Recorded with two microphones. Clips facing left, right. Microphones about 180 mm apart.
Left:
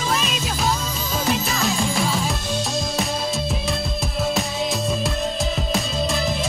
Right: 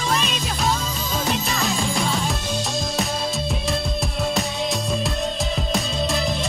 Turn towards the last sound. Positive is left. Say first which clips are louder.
# even
turn(degrees=0)  # may be behind; listen again after turning